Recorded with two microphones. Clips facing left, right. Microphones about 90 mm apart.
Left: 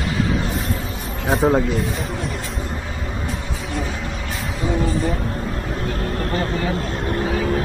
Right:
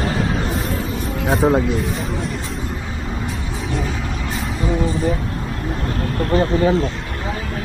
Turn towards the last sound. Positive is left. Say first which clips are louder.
# right 6 dB
turn(degrees=-30)  # may be behind; listen again after turning